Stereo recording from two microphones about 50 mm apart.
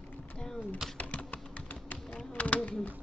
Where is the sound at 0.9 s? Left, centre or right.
Left.